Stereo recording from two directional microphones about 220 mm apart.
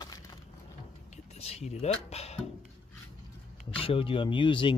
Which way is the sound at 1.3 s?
30° left (ahead or behind).